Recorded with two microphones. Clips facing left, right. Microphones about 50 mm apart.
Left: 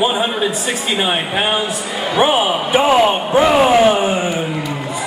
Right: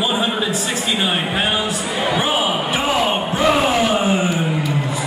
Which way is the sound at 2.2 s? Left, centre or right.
Left.